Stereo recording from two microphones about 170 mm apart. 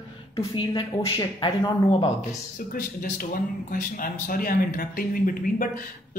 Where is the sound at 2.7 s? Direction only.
55° left (ahead or behind).